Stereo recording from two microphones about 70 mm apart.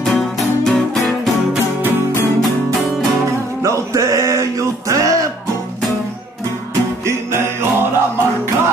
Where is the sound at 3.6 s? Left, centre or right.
Right.